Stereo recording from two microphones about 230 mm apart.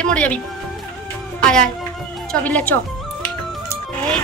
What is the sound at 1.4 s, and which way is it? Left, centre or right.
Music, centre.